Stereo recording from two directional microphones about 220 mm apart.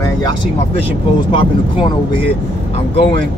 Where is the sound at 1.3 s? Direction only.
20° left (ahead or behind).